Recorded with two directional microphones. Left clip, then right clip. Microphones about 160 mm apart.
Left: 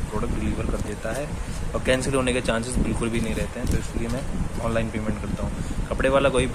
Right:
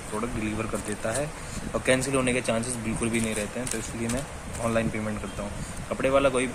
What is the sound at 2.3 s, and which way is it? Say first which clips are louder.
Speech: left 2 dB; centre (ahead or behind).